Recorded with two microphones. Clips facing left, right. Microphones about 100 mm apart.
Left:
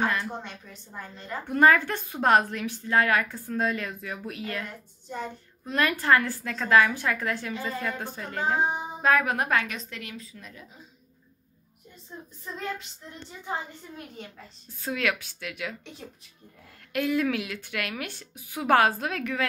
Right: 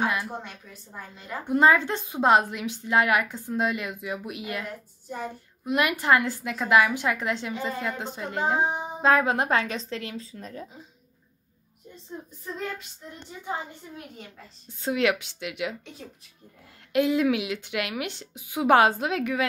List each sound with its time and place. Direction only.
0.0 s a woman's voice: 10° right (ahead or behind)
4.6 s a woman's voice: 5° right (ahead or behind)
5.7 s a woman's voice: 15° right (ahead or behind); by 10.7 s 35° right (ahead or behind)
13.9 s a woman's voice: 5° right (ahead or behind)
14.8 s a woman's voice: 20° right (ahead or behind)
16.9 s a woman's voice: 20° right (ahead or behind)